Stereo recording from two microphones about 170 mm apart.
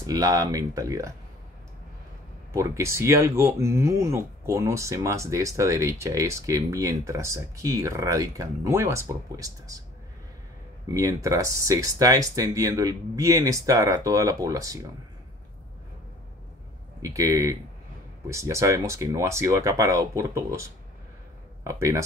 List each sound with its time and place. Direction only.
0.0 s speech: 20° right (ahead or behind)
2.5 s speech: 20° right (ahead or behind)
10.9 s speech: 20° right (ahead or behind)
17.0 s speech: 20° right (ahead or behind)
21.6 s speech: 15° right (ahead or behind)